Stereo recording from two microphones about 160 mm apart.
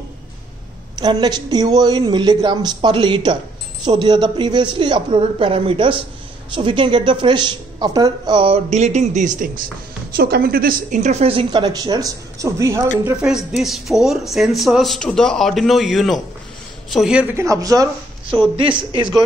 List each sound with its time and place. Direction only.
0.9 s a woman's voice: 25° right (ahead or behind); by 9.5 s 50° right (ahead or behind)
10.1 s a woman's voice: 75° right (ahead or behind); by 12.9 s 20° right (ahead or behind)
13.2 s a man's voice: 5° right (ahead or behind); by 17.8 s 20° right (ahead or behind)
18.2 s a woman's voice: 35° right (ahead or behind)